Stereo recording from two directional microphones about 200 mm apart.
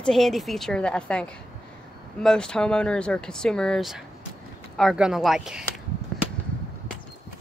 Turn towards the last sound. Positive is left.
turn(degrees=0)  # may be behind; listen again after turning